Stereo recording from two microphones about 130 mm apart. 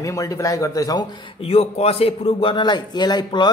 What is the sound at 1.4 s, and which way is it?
A man's voice, 50° left (ahead or behind).